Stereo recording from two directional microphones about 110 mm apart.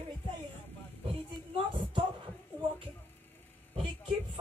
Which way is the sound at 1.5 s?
45° right (ahead or behind).